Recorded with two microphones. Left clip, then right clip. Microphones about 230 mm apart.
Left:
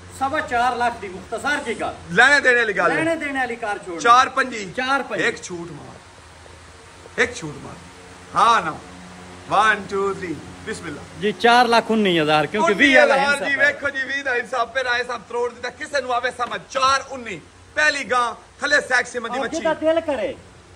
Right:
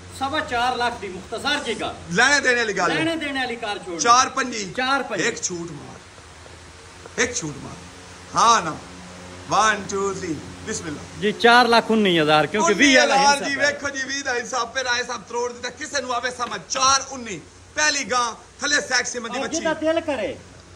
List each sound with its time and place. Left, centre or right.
0.2 s a man's voice: centre
2.1 s a man's voice: centre
2.9 s a man's voice: centre
4.0 s a man's voice: centre
7.2 s speech: centre
8.4 s a man's voice: centre